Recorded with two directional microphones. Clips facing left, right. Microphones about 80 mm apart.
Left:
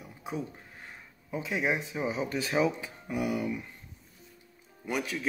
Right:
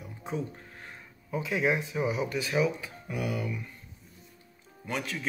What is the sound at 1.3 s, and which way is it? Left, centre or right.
Speech, left.